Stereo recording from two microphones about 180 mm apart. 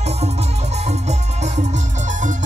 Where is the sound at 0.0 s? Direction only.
35° right (ahead or behind).